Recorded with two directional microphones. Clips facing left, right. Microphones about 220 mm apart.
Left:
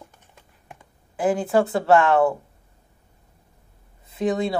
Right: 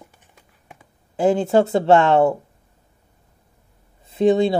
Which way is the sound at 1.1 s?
25° right (ahead or behind).